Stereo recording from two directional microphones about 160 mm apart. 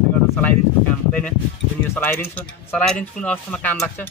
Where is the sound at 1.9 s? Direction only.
15° left (ahead or behind).